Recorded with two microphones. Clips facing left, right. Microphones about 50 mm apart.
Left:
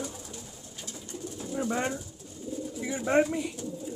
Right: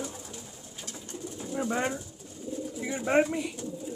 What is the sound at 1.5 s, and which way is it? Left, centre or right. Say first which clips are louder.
Speech: even; centre.